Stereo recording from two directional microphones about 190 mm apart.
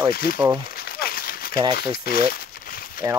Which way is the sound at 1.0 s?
50° left (ahead or behind).